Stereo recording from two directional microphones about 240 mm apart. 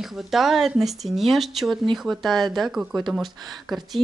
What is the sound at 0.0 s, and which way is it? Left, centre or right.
Speech, centre.